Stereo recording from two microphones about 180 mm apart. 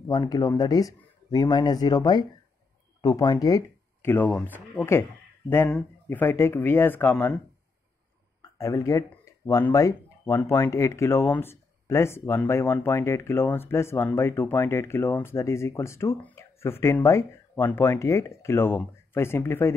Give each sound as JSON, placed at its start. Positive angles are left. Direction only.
{"t": 0.1, "sound": "speech", "side_deg": 20}
{"t": 8.4, "sound": "speech", "side_deg": 15}